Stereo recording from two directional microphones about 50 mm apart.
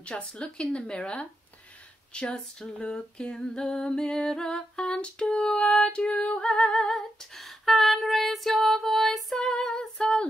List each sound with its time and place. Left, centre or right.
0.0 s speech: centre
2.1 s a sound: centre
9.4 s female singing: centre